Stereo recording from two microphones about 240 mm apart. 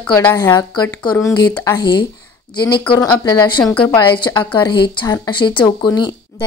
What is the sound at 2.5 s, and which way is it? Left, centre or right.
Speech, centre.